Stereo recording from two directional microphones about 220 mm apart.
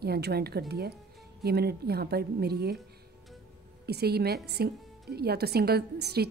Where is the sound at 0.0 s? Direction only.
45° right (ahead or behind).